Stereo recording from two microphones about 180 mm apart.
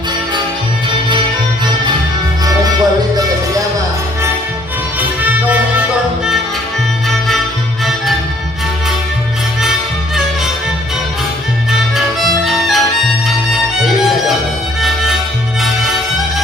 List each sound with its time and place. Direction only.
2.4 s music: 20° right (ahead or behind)
5.2 s music: 10° right (ahead or behind)
9.6 s music: centre (ahead or behind)
11.7 s music: centre (ahead or behind)